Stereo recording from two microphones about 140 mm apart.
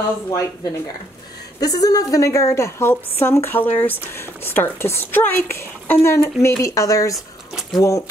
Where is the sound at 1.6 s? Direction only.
25° left (ahead or behind).